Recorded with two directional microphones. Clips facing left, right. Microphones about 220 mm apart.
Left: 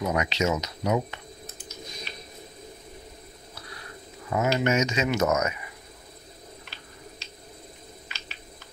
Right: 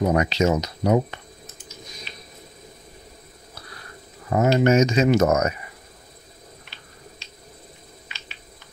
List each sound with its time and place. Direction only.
0.0 s speech: 35° right (ahead or behind)
4.3 s speech: 40° right (ahead or behind)
5.2 s speech: 50° right (ahead or behind)